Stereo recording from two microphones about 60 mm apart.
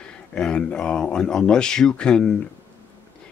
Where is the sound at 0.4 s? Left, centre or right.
Centre.